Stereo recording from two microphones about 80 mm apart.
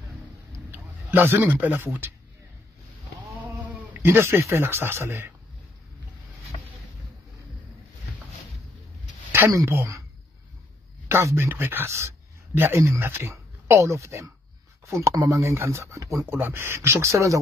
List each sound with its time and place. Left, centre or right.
0.7 s a man's voice: right
3.9 s speech: right
11.1 s speech: right
16.3 s speech: right